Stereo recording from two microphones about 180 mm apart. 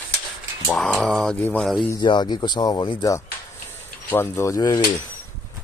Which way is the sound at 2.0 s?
25° left (ahead or behind).